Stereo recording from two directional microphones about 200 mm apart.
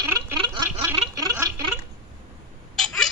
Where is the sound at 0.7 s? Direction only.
10° right (ahead or behind).